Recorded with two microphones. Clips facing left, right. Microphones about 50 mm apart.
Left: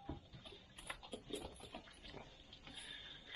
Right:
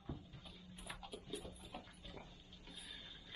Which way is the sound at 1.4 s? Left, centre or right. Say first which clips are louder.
Left 1 dB; left.